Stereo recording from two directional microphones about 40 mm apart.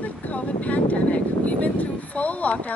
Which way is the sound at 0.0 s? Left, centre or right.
Left.